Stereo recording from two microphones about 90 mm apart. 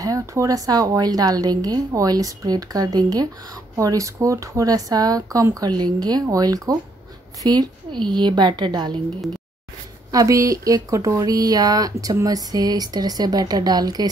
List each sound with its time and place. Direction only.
0.0 s a woman's voice: 35° right (ahead or behind)
7.4 s a woman's voice: 55° right (ahead or behind)
10.1 s a woman's voice: 35° right (ahead or behind)